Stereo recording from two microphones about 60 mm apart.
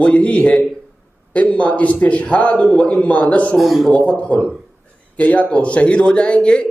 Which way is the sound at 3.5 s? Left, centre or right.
Centre.